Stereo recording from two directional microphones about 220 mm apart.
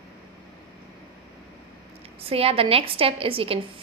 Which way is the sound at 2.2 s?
25° right (ahead or behind).